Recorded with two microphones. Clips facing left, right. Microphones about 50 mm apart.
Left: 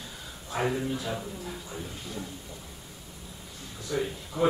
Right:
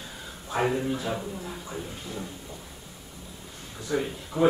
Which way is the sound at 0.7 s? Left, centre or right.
Centre.